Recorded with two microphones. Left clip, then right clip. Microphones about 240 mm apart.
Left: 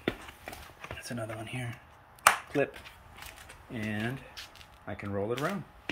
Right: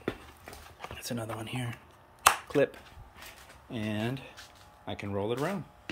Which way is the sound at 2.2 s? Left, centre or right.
Centre.